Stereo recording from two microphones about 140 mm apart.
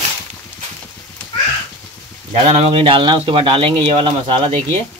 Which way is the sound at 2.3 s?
50° right (ahead or behind).